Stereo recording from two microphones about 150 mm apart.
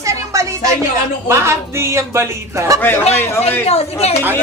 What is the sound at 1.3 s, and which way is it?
Speech, 20° right (ahead or behind).